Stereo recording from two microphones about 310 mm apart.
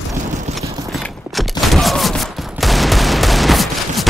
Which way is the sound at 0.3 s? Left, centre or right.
Right.